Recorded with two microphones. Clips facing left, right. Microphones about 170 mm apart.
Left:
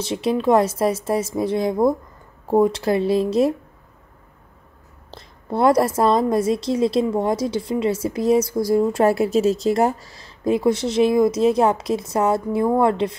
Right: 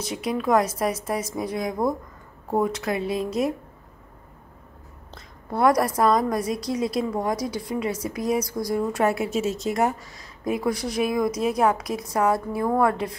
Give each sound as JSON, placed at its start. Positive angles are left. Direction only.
{"t": 0.0, "sound": "a woman's voice", "side_deg": 30}
{"t": 5.1, "sound": "a woman's voice", "side_deg": 25}